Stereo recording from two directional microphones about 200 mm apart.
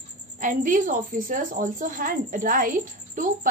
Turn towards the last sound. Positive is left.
turn(degrees=-40)  # may be behind; listen again after turning